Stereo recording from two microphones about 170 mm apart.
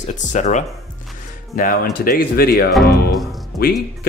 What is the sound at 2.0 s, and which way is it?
Speech, 60° left (ahead or behind).